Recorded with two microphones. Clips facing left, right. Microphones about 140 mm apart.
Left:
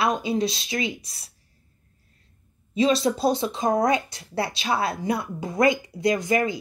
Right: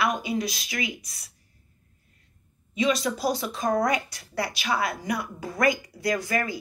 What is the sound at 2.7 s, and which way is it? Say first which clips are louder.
Speech: left 4 dB; 30° left (ahead or behind).